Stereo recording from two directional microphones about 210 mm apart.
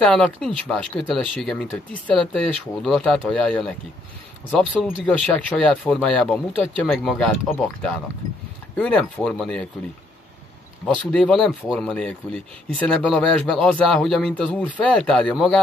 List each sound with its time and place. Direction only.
0.0 s speech: 5° left (ahead or behind)
11.1 s speech: 5° left (ahead or behind)